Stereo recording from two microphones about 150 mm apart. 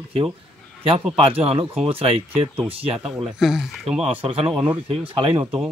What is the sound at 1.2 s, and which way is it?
Speech, 40° right (ahead or behind).